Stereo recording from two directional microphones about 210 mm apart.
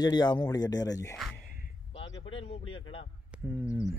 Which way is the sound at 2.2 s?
25° left (ahead or behind).